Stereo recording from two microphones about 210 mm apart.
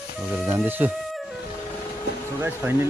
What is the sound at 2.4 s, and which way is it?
Speech, 10° right (ahead or behind).